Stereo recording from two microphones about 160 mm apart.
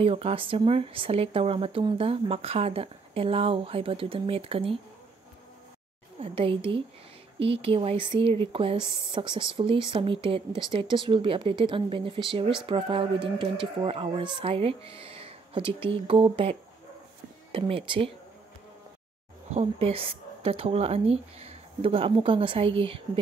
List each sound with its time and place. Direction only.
0.0 s speech: 35° right (ahead or behind)
6.1 s speech: 35° right (ahead or behind)
19.5 s speech: 40° right (ahead or behind)